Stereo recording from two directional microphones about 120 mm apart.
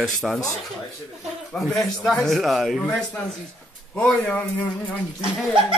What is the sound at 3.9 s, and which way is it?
Speech, 15° left (ahead or behind).